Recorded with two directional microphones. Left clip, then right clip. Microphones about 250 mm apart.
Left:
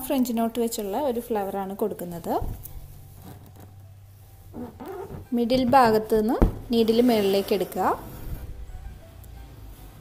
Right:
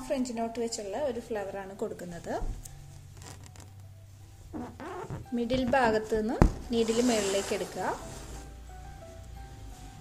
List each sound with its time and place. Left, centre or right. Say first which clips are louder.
0.3 s a woman's voice: left 7 dB; left
5.3 s a woman's voice: left 8 dB; left